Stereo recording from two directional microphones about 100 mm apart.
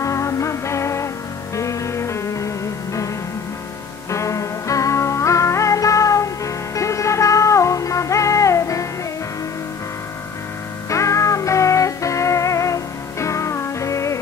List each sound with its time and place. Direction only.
0.0 s music: 30° left (ahead or behind)
4.1 s music: 30° left (ahead or behind)
10.9 s music: 30° left (ahead or behind)